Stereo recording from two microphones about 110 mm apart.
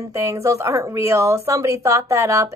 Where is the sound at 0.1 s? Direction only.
25° right (ahead or behind).